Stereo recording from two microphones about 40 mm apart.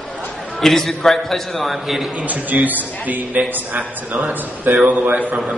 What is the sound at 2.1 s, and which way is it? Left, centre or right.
A man's voice, right.